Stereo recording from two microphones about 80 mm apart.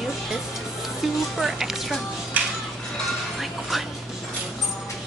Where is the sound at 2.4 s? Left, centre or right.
Right.